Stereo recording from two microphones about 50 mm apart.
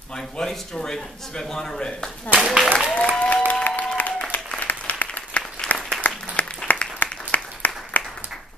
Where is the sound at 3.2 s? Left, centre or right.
Left.